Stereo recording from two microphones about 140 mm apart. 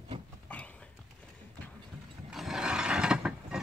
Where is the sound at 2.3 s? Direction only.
5° right (ahead or behind).